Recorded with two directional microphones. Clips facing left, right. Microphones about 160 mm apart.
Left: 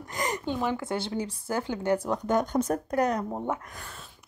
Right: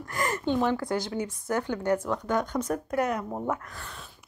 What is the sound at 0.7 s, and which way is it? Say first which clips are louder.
A woman's voice: right 1 dB; 25° left (ahead or behind).